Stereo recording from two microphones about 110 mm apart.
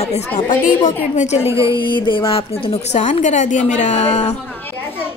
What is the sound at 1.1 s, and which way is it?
Speech, 90° left.